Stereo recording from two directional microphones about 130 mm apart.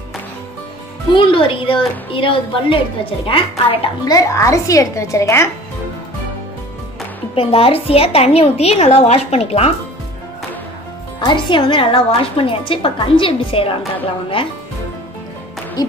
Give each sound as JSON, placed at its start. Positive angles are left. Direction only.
{"t": 1.1, "sound": "a woman's voice", "side_deg": 40}
{"t": 4.0, "sound": "speech", "side_deg": 25}
{"t": 7.3, "sound": "a woman's voice", "side_deg": 45}
{"t": 11.1, "sound": "a woman's voice", "side_deg": 35}